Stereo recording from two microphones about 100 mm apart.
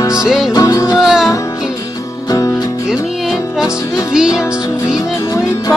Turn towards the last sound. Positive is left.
turn(degrees=-5)  # may be behind; listen again after turning